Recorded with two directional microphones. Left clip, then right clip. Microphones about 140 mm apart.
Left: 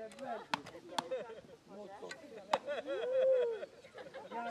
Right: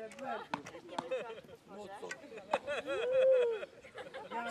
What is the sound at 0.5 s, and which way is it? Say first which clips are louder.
Speech: left 2 dB; 40° left (ahead or behind).